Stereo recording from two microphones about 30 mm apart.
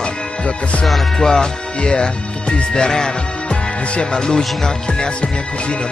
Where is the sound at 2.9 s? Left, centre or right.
Left.